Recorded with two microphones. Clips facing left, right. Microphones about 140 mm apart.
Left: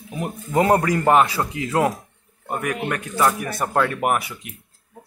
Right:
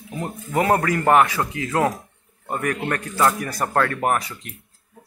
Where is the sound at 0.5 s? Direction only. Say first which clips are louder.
Left 2 dB; 20° left (ahead or behind).